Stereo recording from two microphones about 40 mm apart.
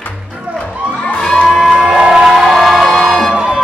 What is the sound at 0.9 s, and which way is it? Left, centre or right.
Music, left.